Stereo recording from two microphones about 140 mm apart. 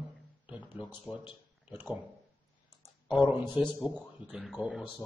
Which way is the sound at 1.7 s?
10° right (ahead or behind).